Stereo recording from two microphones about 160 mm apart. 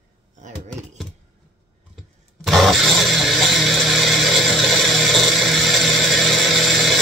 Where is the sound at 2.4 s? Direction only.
Centre (ahead or behind).